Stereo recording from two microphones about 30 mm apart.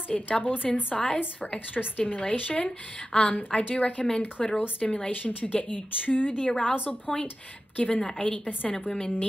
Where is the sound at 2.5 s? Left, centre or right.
Left.